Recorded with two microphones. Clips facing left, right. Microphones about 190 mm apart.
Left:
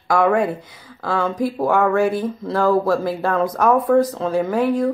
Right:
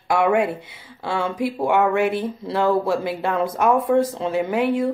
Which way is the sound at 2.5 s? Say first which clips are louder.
Left 2 dB; 25° right (ahead or behind).